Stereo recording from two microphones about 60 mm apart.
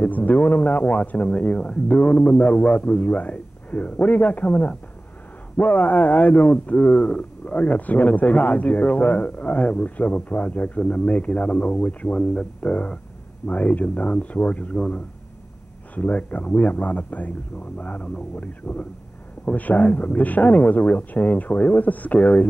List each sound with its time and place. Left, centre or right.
0.0 s a man's voice: left
15.9 s a man's voice: left